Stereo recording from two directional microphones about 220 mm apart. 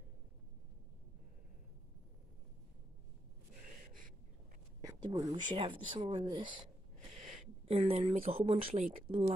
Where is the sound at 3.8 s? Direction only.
40° right (ahead or behind).